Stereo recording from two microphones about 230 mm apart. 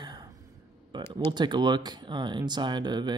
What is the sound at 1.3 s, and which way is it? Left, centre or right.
Speech, centre.